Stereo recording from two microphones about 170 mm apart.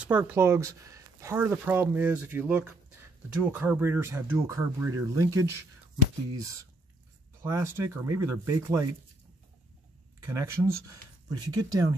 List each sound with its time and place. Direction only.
0.0 s speech: 10° right (ahead or behind)
7.4 s speech: 20° right (ahead or behind)
10.2 s speech: 15° right (ahead or behind)